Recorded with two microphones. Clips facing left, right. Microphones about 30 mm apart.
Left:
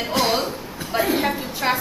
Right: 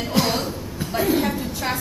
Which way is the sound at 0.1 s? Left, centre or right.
Centre.